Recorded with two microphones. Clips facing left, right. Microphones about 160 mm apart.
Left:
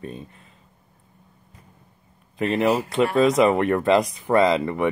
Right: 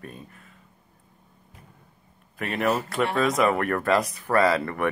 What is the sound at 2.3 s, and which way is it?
Speech, 30° left (ahead or behind).